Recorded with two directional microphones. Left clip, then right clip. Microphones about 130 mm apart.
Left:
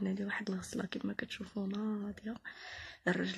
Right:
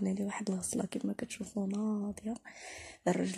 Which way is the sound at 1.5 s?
5° left (ahead or behind).